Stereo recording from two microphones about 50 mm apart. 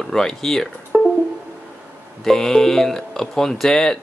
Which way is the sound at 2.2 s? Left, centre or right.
Centre.